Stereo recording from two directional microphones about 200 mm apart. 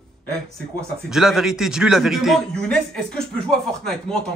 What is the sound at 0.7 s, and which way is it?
A man's voice, centre (ahead or behind).